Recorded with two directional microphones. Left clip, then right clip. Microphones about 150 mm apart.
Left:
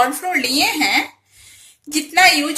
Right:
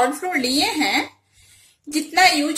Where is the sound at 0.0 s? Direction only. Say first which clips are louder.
Left 3 dB; 25° right (ahead or behind).